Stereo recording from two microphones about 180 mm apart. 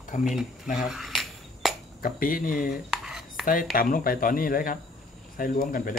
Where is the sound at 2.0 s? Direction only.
50° left (ahead or behind).